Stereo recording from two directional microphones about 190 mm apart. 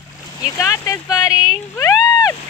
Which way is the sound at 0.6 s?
15° left (ahead or behind).